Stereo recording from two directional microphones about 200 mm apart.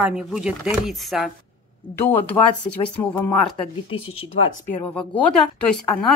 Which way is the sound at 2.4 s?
15° left (ahead or behind).